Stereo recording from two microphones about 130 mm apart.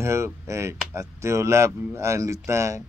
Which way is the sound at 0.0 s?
20° right (ahead or behind).